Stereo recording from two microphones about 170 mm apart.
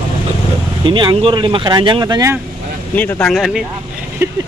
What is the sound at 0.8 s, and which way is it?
Speech, 30° right (ahead or behind).